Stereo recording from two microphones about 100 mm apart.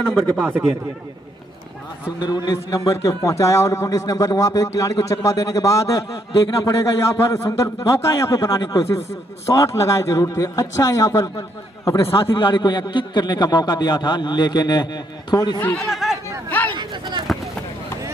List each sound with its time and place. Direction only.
0.0 s speech: 5° left (ahead or behind)
2.1 s a man's voice: 45° left (ahead or behind)
2.5 s a man's voice: 30° left (ahead or behind)
8.5 s a man's voice: 45° left (ahead or behind)
9.5 s a man's voice: 30° left (ahead or behind)
12.4 s a man's voice: 55° left (ahead or behind)
15.9 s chatter: centre (ahead or behind)
16.4 s a sound: 20° left (ahead or behind)
16.7 s a sound: 50° right (ahead or behind)